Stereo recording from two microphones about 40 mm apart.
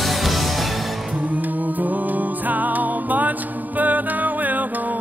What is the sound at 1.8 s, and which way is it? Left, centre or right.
Music, right.